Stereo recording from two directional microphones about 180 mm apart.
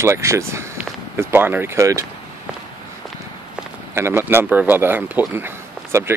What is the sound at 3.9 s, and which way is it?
Speech, 15° right (ahead or behind).